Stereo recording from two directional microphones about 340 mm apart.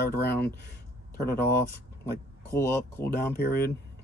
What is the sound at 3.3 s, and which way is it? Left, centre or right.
Speech, left.